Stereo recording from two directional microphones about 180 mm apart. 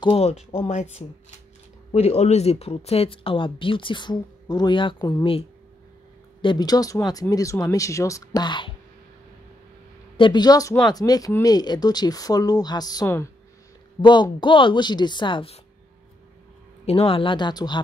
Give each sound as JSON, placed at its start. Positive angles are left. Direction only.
{"t": 0.0, "sound": "speech", "side_deg": 35}
{"t": 6.4, "sound": "speech", "side_deg": 25}
{"t": 10.1, "sound": "speech", "side_deg": 25}
{"t": 14.0, "sound": "speech", "side_deg": 25}
{"t": 16.8, "sound": "speech", "side_deg": 30}